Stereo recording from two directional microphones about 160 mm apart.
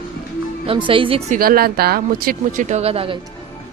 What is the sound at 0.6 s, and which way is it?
Speech, 30° right (ahead or behind).